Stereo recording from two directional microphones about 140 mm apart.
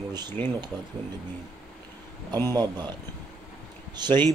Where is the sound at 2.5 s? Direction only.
30° right (ahead or behind).